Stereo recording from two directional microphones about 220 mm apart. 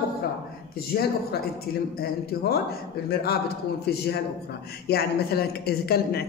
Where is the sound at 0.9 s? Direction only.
45° left (ahead or behind).